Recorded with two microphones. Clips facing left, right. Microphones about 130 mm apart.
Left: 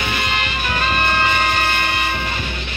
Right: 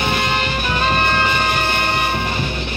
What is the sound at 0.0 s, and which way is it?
Music, 35° right (ahead or behind).